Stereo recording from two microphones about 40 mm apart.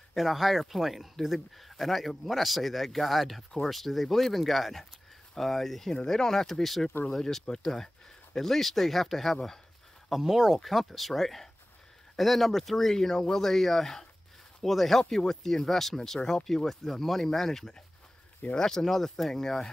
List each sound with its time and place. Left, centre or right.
0.1 s speech: centre